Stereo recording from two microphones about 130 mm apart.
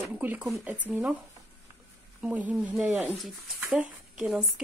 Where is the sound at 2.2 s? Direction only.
10° right (ahead or behind).